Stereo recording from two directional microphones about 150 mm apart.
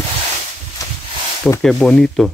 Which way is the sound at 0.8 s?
25° left (ahead or behind).